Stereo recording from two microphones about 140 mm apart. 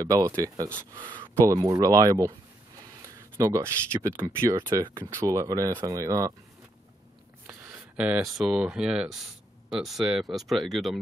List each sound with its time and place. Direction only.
0.0 s speech: 25° right (ahead or behind)
3.4 s speech: 20° right (ahead or behind)
4.6 s speech: 35° right (ahead or behind)
4.9 s speech: 20° right (ahead or behind)
7.4 s speech: 5° right (ahead or behind)